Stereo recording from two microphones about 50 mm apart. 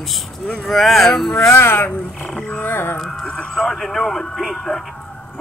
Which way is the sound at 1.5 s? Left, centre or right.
Left.